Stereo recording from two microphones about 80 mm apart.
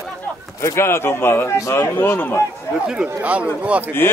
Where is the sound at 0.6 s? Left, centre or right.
Left.